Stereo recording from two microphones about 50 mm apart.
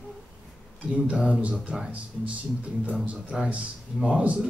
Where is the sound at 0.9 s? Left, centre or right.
Right.